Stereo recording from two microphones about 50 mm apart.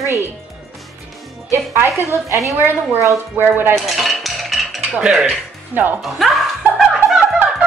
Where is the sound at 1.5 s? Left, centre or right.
Right.